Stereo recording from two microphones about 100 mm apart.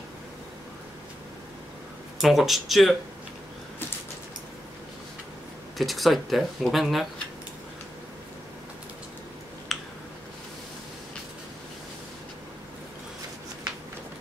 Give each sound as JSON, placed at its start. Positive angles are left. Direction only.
{"t": 2.1, "sound": "speech", "side_deg": 0}
{"t": 5.8, "sound": "speech", "side_deg": 0}
{"t": 9.7, "sound": "a sound", "side_deg": 0}